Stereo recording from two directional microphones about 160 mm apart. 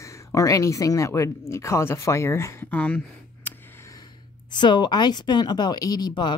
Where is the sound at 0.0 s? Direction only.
20° left (ahead or behind).